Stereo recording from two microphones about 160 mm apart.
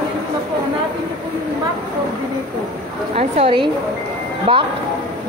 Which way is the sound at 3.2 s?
35° right (ahead or behind).